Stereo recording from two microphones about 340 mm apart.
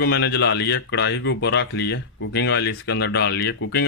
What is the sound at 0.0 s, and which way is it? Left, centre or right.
Speech, left.